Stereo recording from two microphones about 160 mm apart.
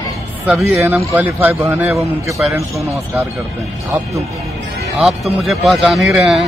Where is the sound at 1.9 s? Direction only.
Centre (ahead or behind).